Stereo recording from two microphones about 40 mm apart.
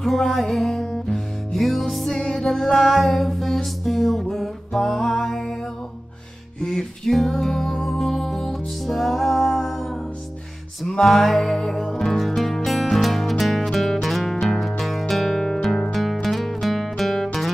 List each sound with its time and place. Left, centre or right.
0.0 s music: centre
6.6 s music: centre
11.1 s music: centre